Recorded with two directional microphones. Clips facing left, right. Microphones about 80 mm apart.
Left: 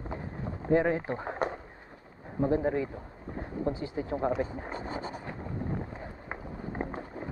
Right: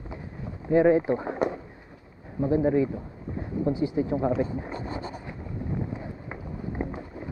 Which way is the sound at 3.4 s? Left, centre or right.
Left.